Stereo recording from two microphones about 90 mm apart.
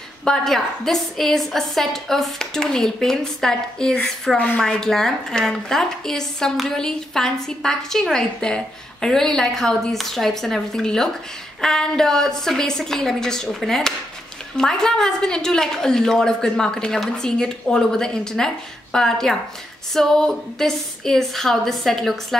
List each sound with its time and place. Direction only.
0.2 s a woman's voice: 5° left (ahead or behind)